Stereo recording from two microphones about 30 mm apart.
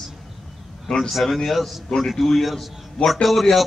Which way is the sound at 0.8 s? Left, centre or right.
Centre.